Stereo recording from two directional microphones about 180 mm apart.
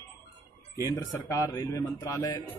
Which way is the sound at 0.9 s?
20° left (ahead or behind).